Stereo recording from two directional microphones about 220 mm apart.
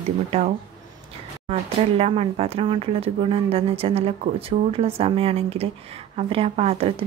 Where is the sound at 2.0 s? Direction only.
25° right (ahead or behind).